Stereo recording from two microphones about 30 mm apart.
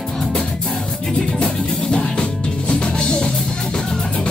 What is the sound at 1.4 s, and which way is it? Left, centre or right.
Music, left.